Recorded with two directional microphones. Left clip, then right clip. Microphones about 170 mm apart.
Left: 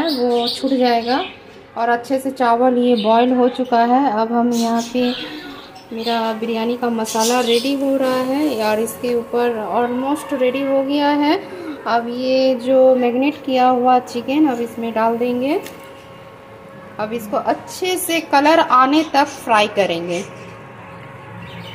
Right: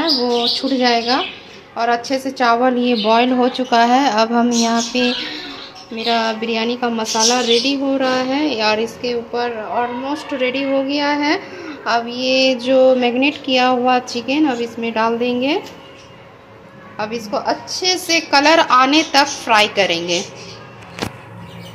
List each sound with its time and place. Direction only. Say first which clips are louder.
0.6 s a woman's voice: even; 15° left (ahead or behind)
16.9 s a woman's voice: even; 20° left (ahead or behind)